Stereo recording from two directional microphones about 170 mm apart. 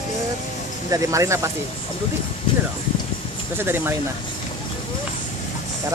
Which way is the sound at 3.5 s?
15° right (ahead or behind).